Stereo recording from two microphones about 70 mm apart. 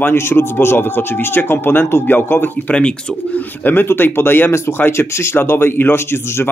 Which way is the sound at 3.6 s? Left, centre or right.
Left.